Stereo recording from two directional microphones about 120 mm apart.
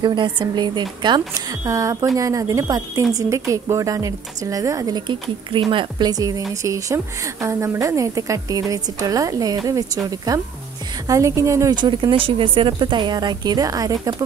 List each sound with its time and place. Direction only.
0.0 s a woman's voice: 40° right (ahead or behind); by 11.7 s 25° right (ahead or behind)
11.7 s speech: 40° right (ahead or behind)